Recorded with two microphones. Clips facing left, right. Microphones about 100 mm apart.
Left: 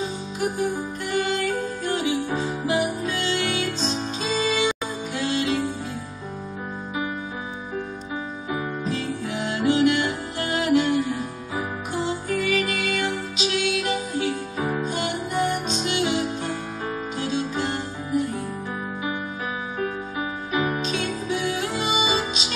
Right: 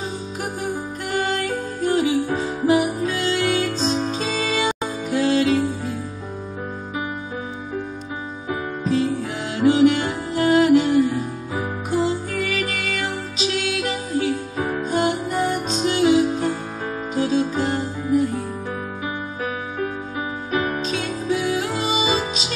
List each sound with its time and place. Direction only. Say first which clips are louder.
1.1 s music: right 1 dB; 40° right (ahead or behind)
8.8 s music: right 6 dB; 35° right (ahead or behind)
12.6 s music: left 1 dB; 35° right (ahead or behind)
14.8 s music: right 5 dB; 40° right (ahead or behind)
20.5 s music: right 1 dB; 15° left (ahead or behind)
20.8 s music: right 2 dB; 40° right (ahead or behind)